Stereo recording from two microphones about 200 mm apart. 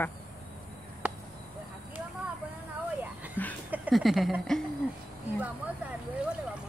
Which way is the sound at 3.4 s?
10° left (ahead or behind).